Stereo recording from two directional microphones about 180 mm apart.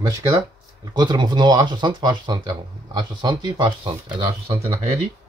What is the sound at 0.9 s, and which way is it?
Speech, 25° right (ahead or behind).